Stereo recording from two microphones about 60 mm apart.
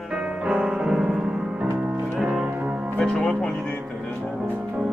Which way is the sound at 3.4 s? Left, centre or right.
Centre.